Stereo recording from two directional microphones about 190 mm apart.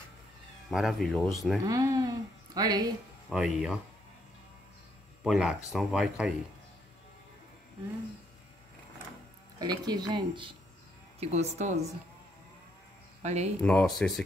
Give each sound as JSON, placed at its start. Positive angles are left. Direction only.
{"t": 0.7, "sound": "speech", "side_deg": 0}
{"t": 1.6, "sound": "speech", "side_deg": -15}
{"t": 3.3, "sound": "speech", "side_deg": 0}
{"t": 5.2, "sound": "speech", "side_deg": 0}
{"t": 9.6, "sound": "speech", "side_deg": -20}
{"t": 11.1, "sound": "speech", "side_deg": -35}
{"t": 13.2, "sound": "speech", "side_deg": -35}
{"t": 13.6, "sound": "speech", "side_deg": 5}